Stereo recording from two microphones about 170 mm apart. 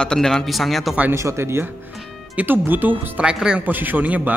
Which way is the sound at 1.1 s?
15° right (ahead or behind).